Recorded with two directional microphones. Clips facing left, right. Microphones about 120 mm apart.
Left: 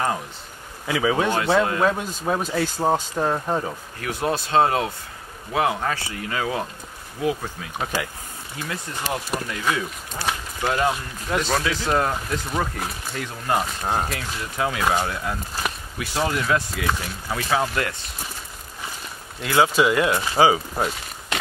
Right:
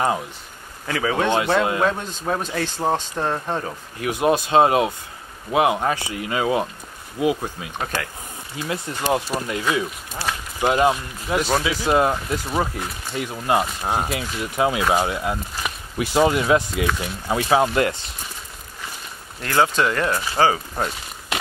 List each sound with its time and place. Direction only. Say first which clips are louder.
0.8 s speech: even; 5° left (ahead or behind)
1.6 s speech: even; 10° right (ahead or behind)
1.9 s speech: left 1 dB; 5° left (ahead or behind)
4.0 s speech: right 5 dB; 15° right (ahead or behind)
7.8 s speech: even; 10° left (ahead or behind)
8.6 s speech: right 6 dB; 20° right (ahead or behind)
11.2 s speech: right 2 dB; 10° right (ahead or behind)
16.0 s speech: right 6 dB; 25° right (ahead or behind)
19.4 s speech: left 1 dB; 5° left (ahead or behind)